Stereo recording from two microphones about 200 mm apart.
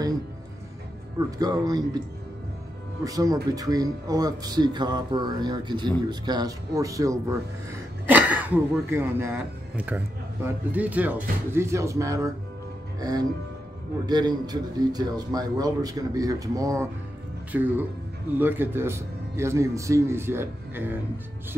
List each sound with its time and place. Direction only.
1.4 s speech: 20° right (ahead or behind)
3.0 s speech: 15° right (ahead or behind)